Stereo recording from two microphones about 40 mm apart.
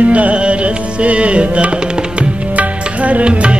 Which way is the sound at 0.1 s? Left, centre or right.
Right.